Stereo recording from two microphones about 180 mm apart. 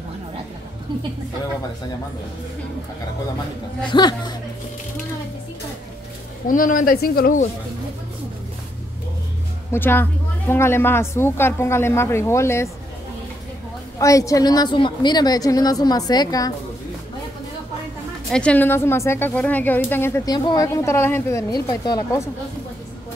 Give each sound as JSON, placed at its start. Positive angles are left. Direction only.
{"t": 3.9, "sound": "a woman's voice", "side_deg": 25}
{"t": 6.4, "sound": "speech", "side_deg": 50}
{"t": 9.7, "sound": "a woman's voice", "side_deg": 10}
{"t": 13.9, "sound": "a woman's voice", "side_deg": 20}
{"t": 18.3, "sound": "a woman's voice", "side_deg": 5}